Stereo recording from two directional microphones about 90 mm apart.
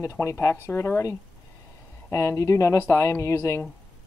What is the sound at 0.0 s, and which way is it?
Speech, 35° left (ahead or behind).